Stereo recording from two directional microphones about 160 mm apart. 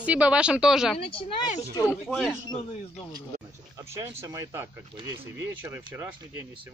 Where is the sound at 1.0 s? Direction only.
35° left (ahead or behind).